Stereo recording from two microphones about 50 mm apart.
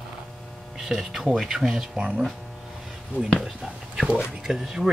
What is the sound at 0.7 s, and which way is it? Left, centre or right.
Speech, centre.